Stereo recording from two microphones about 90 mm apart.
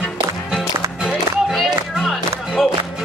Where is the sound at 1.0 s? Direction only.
Centre (ahead or behind).